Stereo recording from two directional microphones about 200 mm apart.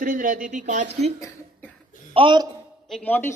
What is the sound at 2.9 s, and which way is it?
Speech, 5° left (ahead or behind).